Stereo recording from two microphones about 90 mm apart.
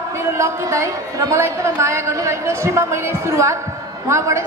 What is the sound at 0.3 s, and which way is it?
A woman's voice, 30° right (ahead or behind).